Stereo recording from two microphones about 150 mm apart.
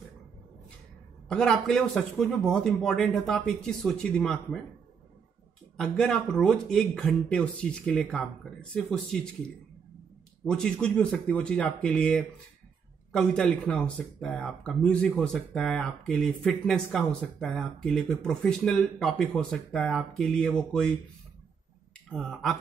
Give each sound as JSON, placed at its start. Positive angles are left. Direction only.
{"t": 1.3, "sound": "speech", "side_deg": 5}
{"t": 5.8, "sound": "speech", "side_deg": 5}
{"t": 10.4, "sound": "speech", "side_deg": 5}
{"t": 22.1, "sound": "speech", "side_deg": 0}